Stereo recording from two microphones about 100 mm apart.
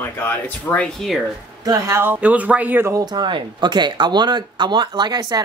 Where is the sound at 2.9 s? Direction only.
45° right (ahead or behind).